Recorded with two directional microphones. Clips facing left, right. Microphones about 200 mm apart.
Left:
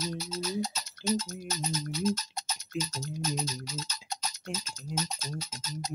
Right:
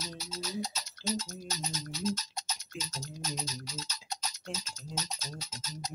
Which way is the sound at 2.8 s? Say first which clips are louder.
Left 8 dB; 55° left (ahead or behind).